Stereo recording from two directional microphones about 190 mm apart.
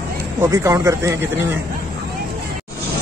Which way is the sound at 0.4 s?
15° right (ahead or behind).